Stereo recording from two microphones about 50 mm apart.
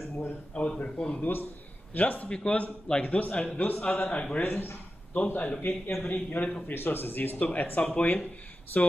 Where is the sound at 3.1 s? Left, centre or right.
Left.